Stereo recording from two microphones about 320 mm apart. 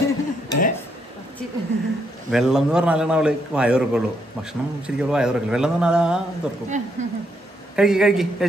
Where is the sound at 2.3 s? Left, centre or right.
Centre.